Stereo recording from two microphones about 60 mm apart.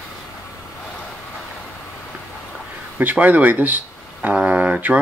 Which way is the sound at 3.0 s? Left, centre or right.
Right.